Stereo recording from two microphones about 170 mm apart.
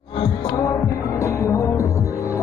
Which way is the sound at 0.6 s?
20° left (ahead or behind).